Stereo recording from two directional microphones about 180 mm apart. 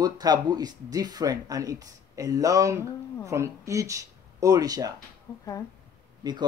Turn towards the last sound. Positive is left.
turn(degrees=-25)  # may be behind; listen again after turning